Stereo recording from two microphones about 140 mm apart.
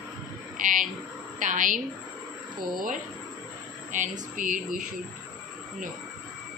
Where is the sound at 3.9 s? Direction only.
65° right (ahead or behind).